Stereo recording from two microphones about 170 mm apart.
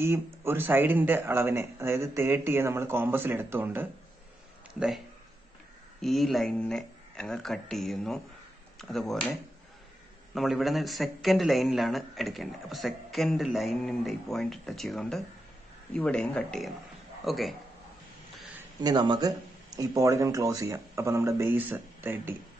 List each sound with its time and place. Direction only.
0.0 s a man's voice: 15° right (ahead or behind); by 9.3 s centre (ahead or behind)
10.3 s a man's voice: centre (ahead or behind)
18.8 s speech: 25° right (ahead or behind)